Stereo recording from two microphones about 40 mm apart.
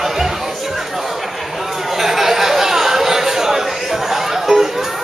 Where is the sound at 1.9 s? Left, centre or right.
Centre.